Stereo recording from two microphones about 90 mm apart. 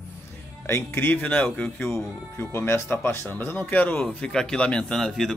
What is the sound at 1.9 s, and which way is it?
Speech, 30° left (ahead or behind).